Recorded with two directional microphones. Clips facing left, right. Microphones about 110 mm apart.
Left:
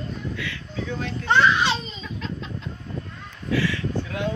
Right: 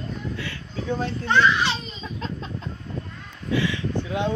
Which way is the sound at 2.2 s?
35° right (ahead or behind).